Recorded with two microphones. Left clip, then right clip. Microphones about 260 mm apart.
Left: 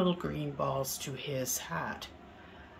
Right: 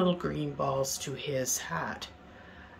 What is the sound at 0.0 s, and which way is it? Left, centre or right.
Speech, centre.